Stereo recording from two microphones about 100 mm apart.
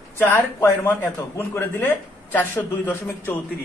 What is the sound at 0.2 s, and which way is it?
A man's voice, 20° left (ahead or behind).